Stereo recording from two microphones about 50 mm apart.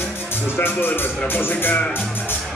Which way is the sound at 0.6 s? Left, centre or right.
Left.